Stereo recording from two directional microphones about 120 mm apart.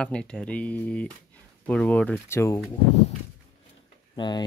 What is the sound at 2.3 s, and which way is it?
Speech, 20° left (ahead or behind).